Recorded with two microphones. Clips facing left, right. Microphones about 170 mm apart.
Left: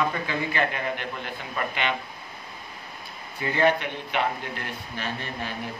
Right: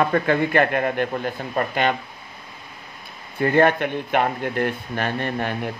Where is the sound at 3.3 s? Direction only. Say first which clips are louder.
Right 6 dB; 55° right (ahead or behind).